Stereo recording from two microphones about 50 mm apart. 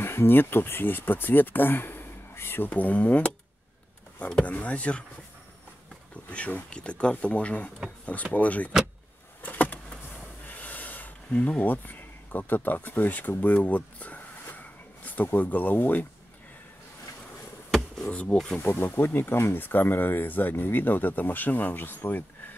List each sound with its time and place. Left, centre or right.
0.0 s speech: left
2.7 s speech: left
4.5 s speech: left
6.2 s speech: left
9.4 s a sound: left
15.2 s speech: left
17.6 s a sound: centre
18.0 s speech: left
18.6 s speech: left